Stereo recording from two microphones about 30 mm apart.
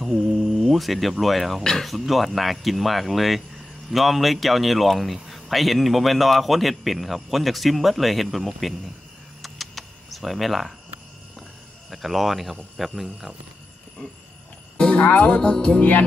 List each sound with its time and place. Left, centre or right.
0.0 s mantra: centre
1.2 s speech: centre
1.6 s music: centre
1.9 s speech: centre
9.4 s typing: centre
11.9 s speech: centre
14.8 s music: left
15.0 s music: left
15.4 s music: left
15.8 s music: left